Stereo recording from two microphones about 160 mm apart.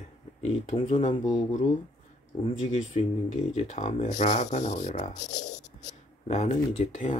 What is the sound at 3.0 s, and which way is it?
Speech, 40° left (ahead or behind).